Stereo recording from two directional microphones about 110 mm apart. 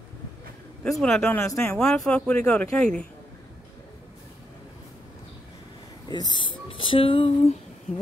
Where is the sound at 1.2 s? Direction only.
20° left (ahead or behind).